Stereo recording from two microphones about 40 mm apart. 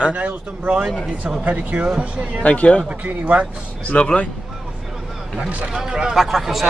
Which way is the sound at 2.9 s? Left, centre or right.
Right.